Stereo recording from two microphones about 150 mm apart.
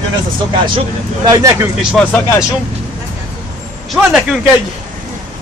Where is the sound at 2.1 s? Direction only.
15° left (ahead or behind).